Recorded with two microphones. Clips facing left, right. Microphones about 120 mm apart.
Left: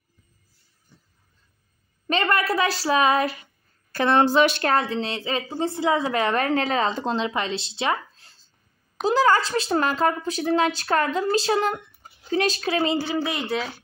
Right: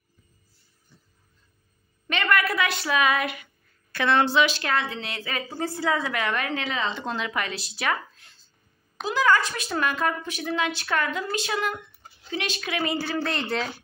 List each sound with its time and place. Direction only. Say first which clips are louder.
2.0 s a woman's voice: left 2 dB; 30° left (ahead or behind); by 4.6 s 50° left (ahead or behind)
4.6 s speech: left 5 dB; 35° left (ahead or behind)
6.0 s a woman's voice: left 5 dB; 35° left (ahead or behind); by 13.7 s 5° left (ahead or behind)